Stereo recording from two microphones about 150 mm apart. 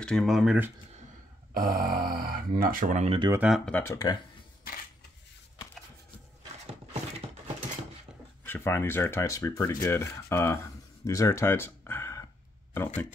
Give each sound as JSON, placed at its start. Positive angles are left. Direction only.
{"t": 0.0, "sound": "speech", "side_deg": 0}
{"t": 1.5, "sound": "speech", "side_deg": -70}
{"t": 3.3, "sound": "speech", "side_deg": -5}
{"t": 3.7, "sound": "speech", "side_deg": 20}
{"t": 8.5, "sound": "speech", "side_deg": 15}